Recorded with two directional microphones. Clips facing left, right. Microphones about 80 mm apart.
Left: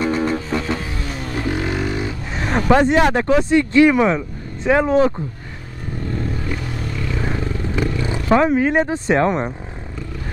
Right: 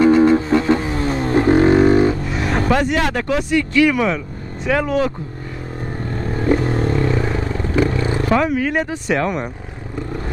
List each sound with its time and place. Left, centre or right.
0.0 s vehicle: right
2.2 s a sound: left
2.7 s speech: left
5.9 s vehicle: right
8.3 s speech: left